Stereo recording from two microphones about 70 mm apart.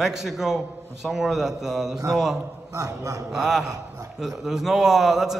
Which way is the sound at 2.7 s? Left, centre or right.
Right.